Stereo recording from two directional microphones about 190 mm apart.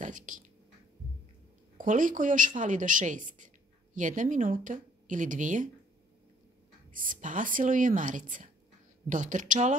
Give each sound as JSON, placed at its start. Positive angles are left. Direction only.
{"t": 0.0, "sound": "speech", "side_deg": -40}
{"t": 1.8, "sound": "a woman's voice", "side_deg": -45}
{"t": 6.9, "sound": "a woman's voice", "side_deg": -45}